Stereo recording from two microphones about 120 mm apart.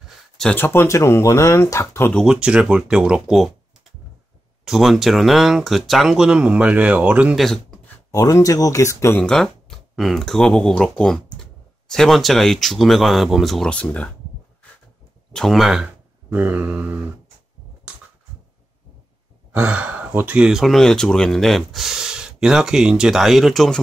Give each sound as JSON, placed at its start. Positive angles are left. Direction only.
{"t": 0.6, "sound": "speech", "side_deg": 20}
{"t": 2.2, "sound": "speech", "side_deg": -10}
{"t": 4.6, "sound": "speech", "side_deg": -5}
{"t": 7.3, "sound": "speech", "side_deg": 0}
{"t": 8.1, "sound": "speech", "side_deg": 30}
{"t": 9.2, "sound": "speech", "side_deg": 5}
{"t": 15.3, "sound": "speech", "side_deg": 0}
{"t": 19.5, "sound": "speech", "side_deg": -10}